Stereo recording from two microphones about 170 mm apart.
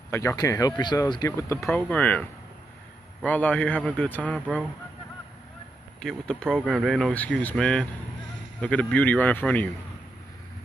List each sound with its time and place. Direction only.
0.1 s speech: 15° left (ahead or behind)
1.7 s a man's voice: 5° left (ahead or behind)
5.9 s a man's voice: 5° left (ahead or behind)